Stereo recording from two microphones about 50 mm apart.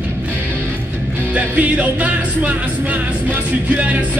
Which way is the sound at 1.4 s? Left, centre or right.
Right.